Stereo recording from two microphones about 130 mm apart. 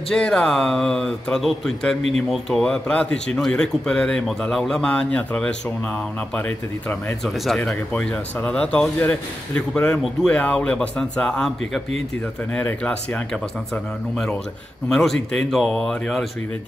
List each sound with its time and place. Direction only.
0.1 s a man's voice: 5° left (ahead or behind)
7.2 s a man's voice: centre (ahead or behind)
14.9 s a man's voice: 5° left (ahead or behind)